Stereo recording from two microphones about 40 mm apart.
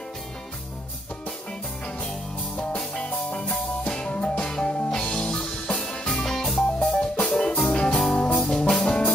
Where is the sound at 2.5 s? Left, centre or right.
Left.